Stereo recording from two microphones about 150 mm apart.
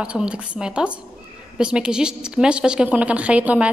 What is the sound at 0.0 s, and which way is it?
A woman's voice, 5° right (ahead or behind).